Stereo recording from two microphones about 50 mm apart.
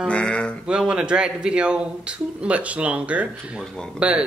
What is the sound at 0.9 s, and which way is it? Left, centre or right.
Speech, centre.